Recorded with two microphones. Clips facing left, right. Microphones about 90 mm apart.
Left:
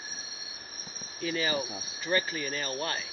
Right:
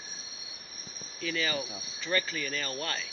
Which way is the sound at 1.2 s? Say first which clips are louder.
Left 2 dB; 25° left (ahead or behind).